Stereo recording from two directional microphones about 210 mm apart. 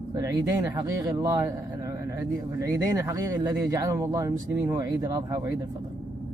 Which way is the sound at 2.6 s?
15° right (ahead or behind).